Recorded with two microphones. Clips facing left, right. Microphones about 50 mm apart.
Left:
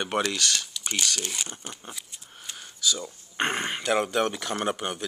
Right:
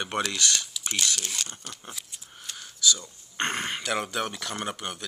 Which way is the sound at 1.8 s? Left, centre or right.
Centre.